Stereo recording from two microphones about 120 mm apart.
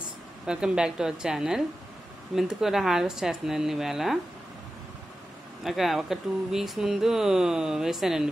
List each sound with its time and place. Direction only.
0.5 s speech: 5° right (ahead or behind)
5.6 s speech: centre (ahead or behind)